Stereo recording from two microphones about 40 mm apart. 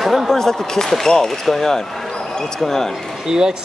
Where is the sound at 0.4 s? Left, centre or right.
Centre.